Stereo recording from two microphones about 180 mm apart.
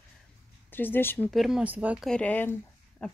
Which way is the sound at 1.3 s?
Centre (ahead or behind).